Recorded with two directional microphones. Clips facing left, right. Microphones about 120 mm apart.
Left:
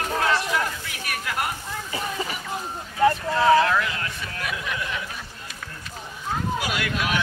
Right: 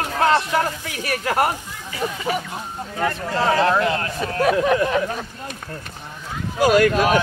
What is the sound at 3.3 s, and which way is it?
Speech, 35° right (ahead or behind).